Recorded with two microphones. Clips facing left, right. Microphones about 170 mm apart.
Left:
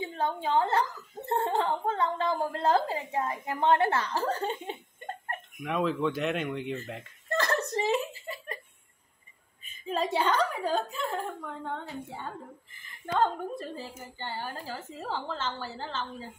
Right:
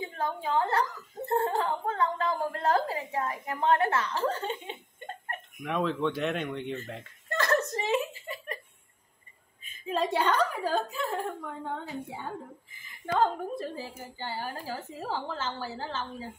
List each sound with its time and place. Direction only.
0.0 s a woman's voice: 25° left (ahead or behind)
5.6 s speech: centre (ahead or behind)
7.2 s laughter: 30° left (ahead or behind)
9.8 s a woman's voice: centre (ahead or behind)